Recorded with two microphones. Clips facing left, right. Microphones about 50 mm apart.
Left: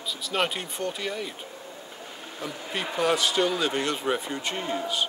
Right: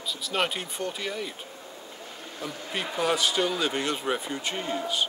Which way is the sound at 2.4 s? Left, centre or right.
Centre.